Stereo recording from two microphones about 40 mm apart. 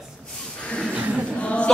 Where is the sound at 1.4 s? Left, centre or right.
Left.